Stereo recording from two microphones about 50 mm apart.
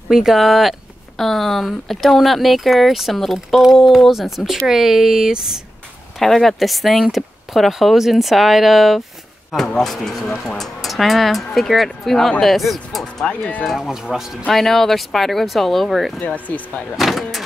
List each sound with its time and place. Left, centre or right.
0.1 s speech: centre
6.1 s speech: centre
9.5 s speech: centre
13.7 s speech: centre
14.5 s speech: centre
16.3 s speech: left
16.9 s speech: centre